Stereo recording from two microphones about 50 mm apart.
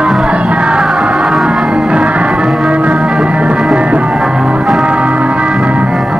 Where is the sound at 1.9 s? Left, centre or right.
Right.